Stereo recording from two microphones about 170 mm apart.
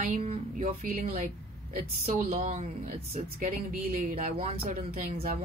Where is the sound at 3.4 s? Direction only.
55° right (ahead or behind).